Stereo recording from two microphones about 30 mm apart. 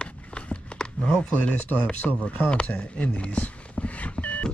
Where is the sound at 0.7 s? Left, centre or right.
Left.